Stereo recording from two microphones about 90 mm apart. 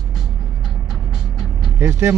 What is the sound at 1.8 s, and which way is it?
Speech, 30° right (ahead or behind).